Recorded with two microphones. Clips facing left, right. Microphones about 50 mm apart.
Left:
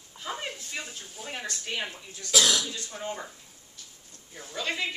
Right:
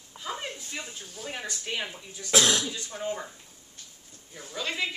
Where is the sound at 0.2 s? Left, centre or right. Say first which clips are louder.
Even; centre.